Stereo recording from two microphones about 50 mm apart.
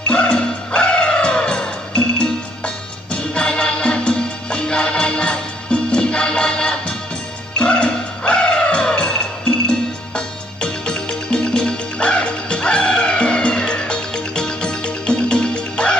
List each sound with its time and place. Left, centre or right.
0.1 s music: left